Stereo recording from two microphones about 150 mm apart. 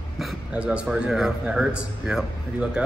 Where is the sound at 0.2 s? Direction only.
5° right (ahead or behind).